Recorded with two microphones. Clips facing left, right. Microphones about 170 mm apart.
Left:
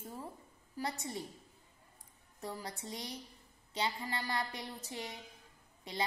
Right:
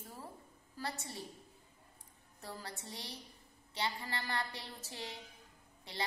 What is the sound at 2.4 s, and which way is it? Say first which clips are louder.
A woman's voice: left 4 dB; 20° left (ahead or behind).